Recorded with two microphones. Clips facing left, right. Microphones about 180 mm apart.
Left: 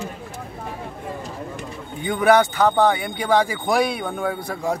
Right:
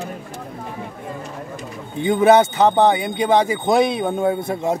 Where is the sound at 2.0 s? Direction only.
25° right (ahead or behind).